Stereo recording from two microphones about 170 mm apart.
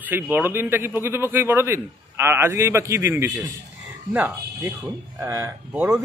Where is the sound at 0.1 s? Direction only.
10° right (ahead or behind).